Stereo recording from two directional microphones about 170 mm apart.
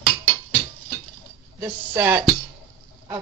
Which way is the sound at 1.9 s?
15° right (ahead or behind).